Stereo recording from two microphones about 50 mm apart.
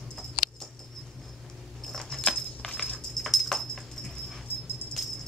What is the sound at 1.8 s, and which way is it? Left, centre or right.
Keys jangling, centre.